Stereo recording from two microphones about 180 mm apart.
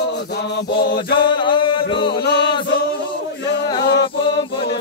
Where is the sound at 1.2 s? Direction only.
25° left (ahead or behind).